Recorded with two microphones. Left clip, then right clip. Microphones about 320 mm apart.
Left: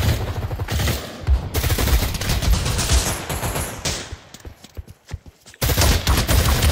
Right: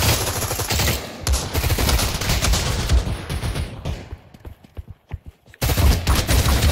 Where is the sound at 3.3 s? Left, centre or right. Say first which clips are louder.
Left 5 dB; centre.